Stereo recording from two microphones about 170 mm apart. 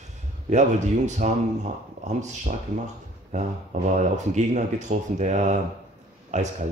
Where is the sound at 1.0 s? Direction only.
45° right (ahead or behind).